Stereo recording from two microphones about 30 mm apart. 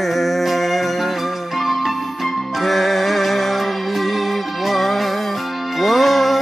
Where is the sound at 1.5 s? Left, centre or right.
Centre.